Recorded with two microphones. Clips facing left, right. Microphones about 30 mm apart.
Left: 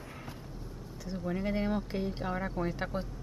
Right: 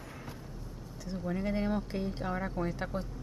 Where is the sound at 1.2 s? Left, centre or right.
Centre.